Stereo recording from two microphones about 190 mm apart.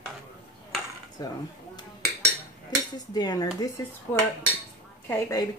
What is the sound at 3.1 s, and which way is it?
A woman's voice, 20° left (ahead or behind).